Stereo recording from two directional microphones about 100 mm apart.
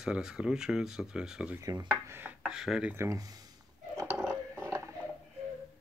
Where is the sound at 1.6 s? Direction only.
40° right (ahead or behind).